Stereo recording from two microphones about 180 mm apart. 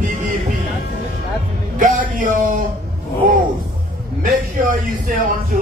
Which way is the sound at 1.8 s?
45° right (ahead or behind).